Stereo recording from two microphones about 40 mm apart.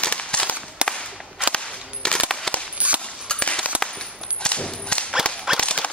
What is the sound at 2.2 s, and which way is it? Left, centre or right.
Machine gun, centre.